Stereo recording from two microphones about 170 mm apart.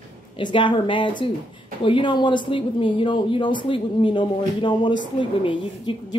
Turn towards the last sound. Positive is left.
turn(degrees=30)  # may be behind; listen again after turning